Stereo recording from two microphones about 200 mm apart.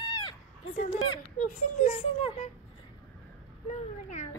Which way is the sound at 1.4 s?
40° left (ahead or behind).